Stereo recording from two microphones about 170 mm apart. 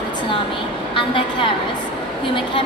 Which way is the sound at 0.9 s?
30° left (ahead or behind).